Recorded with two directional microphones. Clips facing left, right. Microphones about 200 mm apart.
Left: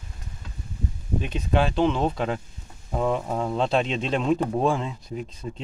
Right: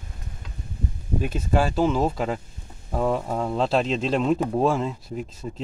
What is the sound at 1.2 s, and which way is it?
Speech, 5° right (ahead or behind).